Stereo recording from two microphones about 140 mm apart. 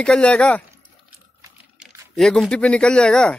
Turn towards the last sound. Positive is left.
turn(degrees=5)  # may be behind; listen again after turning